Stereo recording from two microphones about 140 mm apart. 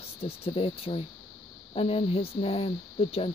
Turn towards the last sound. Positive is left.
turn(degrees=45)  # may be behind; listen again after turning